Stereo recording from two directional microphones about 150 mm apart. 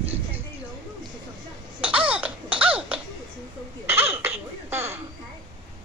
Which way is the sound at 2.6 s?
10° right (ahead or behind).